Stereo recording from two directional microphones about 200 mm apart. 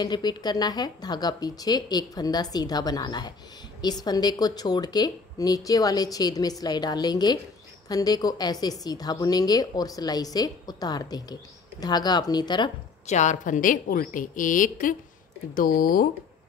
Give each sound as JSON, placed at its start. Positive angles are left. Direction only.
{"t": 0.0, "sound": "a woman's voice", "side_deg": 20}
{"t": 13.0, "sound": "a woman's voice", "side_deg": 35}